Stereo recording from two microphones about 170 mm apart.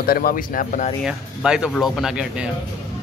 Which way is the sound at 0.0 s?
60° left (ahead or behind).